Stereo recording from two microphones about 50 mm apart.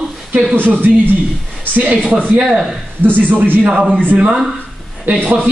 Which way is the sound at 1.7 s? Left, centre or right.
Right.